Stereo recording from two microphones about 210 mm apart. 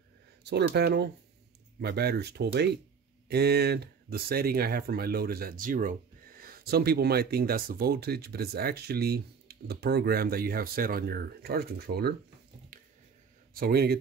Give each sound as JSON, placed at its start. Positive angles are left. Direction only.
{"t": 0.4, "sound": "speech", "side_deg": -50}
{"t": 13.6, "sound": "speech", "side_deg": -50}